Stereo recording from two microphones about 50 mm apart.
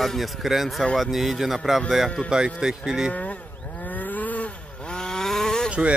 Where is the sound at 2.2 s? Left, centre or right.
Centre.